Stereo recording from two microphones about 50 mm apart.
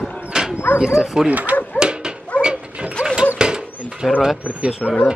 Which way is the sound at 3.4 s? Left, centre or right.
Centre.